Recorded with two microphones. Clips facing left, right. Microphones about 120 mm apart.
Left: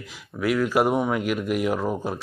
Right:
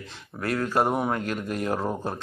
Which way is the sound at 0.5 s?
30° right (ahead or behind).